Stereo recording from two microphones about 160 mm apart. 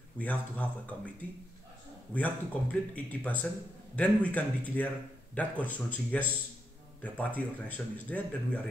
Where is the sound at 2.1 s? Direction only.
10° left (ahead or behind).